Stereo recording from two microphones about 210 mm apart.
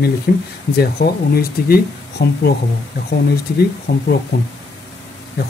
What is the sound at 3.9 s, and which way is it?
Speech, 50° left (ahead or behind).